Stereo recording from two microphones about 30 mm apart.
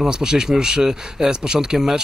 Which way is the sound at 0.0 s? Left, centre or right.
Right.